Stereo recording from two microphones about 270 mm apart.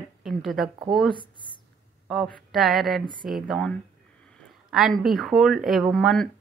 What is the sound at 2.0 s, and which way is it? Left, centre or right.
Speech, centre.